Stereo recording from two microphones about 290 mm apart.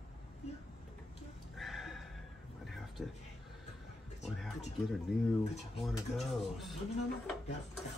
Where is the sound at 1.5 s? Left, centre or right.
Centre.